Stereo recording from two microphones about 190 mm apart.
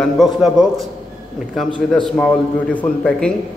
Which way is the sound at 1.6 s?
25° left (ahead or behind).